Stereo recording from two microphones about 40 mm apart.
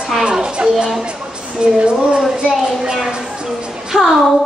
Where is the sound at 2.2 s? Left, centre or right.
Centre.